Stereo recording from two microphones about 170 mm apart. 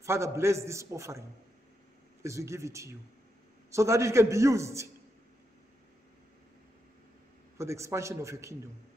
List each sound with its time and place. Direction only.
0.0 s a man's voice: 15° right (ahead or behind)
2.2 s a man's voice: 15° right (ahead or behind)
7.5 s a man's voice: 15° right (ahead or behind)